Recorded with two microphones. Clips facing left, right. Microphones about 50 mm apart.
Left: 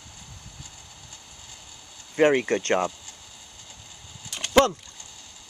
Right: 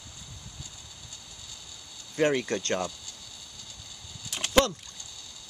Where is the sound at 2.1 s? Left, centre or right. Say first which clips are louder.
Left 6 dB; left.